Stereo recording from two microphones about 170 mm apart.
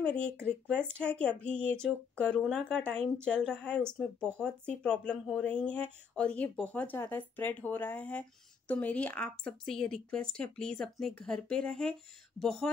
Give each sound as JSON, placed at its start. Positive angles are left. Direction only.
{"t": 0.0, "sound": "speech", "side_deg": 5}